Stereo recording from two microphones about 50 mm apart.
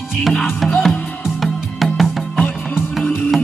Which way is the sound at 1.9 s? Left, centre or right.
Centre.